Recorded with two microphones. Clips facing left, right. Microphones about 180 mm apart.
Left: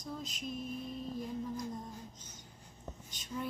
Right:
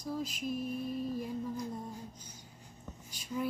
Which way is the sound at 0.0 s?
5° right (ahead or behind).